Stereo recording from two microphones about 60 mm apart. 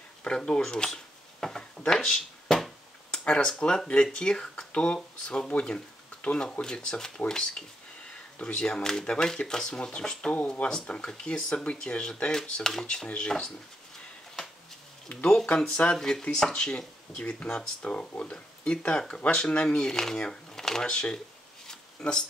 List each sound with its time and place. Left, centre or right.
0.4 s speech: centre
15.4 s speech: centre